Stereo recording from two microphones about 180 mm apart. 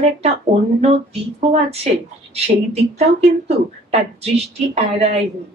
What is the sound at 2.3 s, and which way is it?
A woman's voice, 35° right (ahead or behind).